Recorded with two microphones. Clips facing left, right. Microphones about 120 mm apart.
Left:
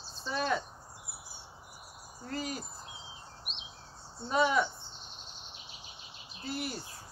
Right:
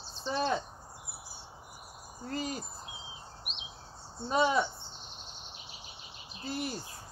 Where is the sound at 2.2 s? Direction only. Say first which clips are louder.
Right 1 dB; 35° right (ahead or behind).